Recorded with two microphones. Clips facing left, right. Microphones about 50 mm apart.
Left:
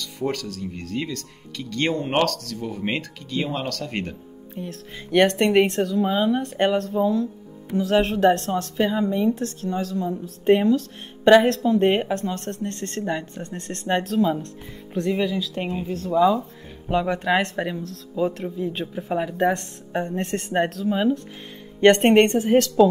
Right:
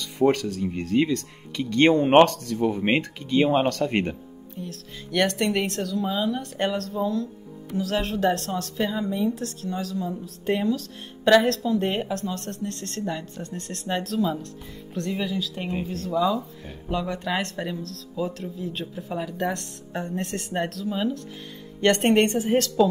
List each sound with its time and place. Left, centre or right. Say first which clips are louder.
0.0 s speech: right 6 dB; right
4.6 s speech: left 3 dB; centre
10.2 s speech: left 8 dB; left
16.9 s speech: left 6 dB; left
22.3 s a woman's voice: left 4 dB; centre